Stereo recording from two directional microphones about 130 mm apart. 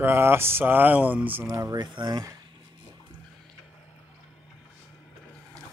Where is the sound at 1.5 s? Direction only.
30° right (ahead or behind).